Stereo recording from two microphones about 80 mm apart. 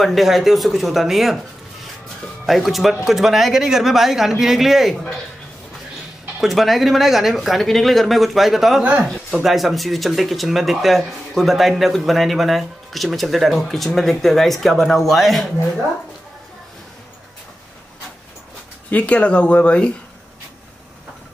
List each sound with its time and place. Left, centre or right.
0.0 s speech: centre
2.4 s speech: centre
6.4 s speech: centre
18.9 s speech: centre